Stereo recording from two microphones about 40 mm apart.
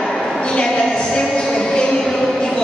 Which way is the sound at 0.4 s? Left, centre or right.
Left.